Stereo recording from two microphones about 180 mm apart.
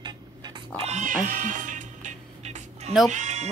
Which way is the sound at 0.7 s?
40° right (ahead or behind).